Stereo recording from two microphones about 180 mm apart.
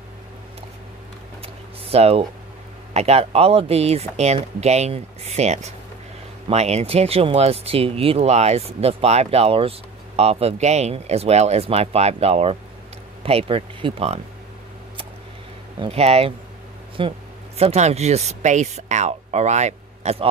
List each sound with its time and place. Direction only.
1.4 s a sound: 35° right (ahead or behind)
2.9 s speech: 35° right (ahead or behind)
15.8 s speech: 35° right (ahead or behind)